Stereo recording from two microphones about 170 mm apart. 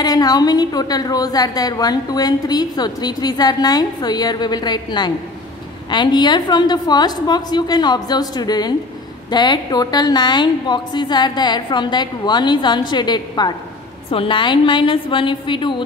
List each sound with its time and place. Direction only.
0.0 s a woman's voice: 25° left (ahead or behind)